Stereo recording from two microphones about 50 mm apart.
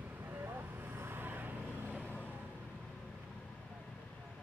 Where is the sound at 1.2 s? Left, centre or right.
Right.